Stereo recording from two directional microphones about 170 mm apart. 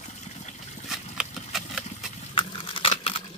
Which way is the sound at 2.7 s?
35° left (ahead or behind).